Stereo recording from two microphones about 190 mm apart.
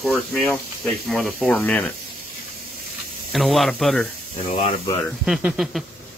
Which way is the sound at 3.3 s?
Centre (ahead or behind).